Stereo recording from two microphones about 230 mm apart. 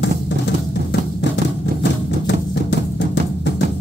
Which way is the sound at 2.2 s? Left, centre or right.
Left.